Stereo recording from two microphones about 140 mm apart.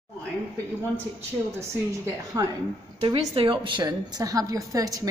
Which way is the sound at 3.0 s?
35° right (ahead or behind).